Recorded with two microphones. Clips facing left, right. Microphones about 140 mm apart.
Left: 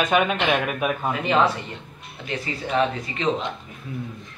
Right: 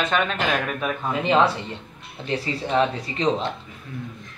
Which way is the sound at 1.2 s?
30° right (ahead or behind).